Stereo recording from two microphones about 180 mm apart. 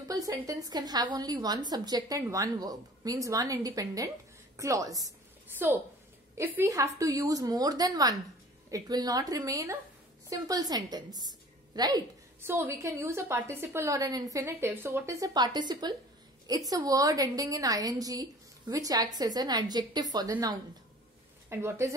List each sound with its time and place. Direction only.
0.1 s a woman's voice: 20° right (ahead or behind)
6.3 s a woman's voice: 15° right (ahead or behind)